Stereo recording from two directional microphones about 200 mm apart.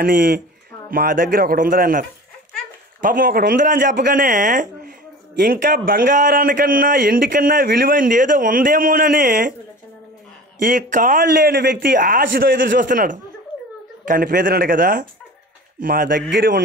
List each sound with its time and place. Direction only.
0.0 s a man's voice: 45° right (ahead or behind)
10.6 s a man's voice: 40° right (ahead or behind)
11.2 s a man's voice: 55° right (ahead or behind)
16.2 s a man's voice: 60° right (ahead or behind)